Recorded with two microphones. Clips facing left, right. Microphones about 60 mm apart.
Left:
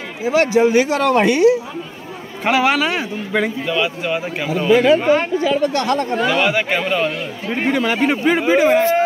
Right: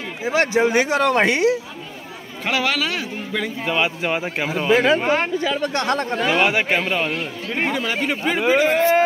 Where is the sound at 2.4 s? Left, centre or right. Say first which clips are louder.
Left 6 dB; centre.